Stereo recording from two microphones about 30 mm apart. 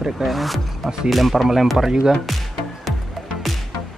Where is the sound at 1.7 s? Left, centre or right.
Right.